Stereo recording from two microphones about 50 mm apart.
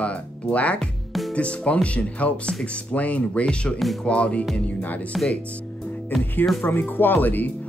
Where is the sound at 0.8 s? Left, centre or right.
Centre.